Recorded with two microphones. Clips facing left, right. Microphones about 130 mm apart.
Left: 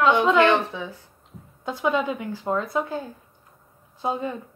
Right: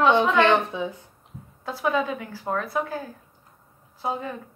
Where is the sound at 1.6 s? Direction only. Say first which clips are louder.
Left 1 dB; 20° left (ahead or behind).